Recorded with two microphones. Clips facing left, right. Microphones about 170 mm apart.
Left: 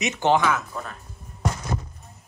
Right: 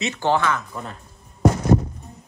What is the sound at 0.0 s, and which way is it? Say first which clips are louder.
Speech: left 1 dB; 20° left (ahead or behind).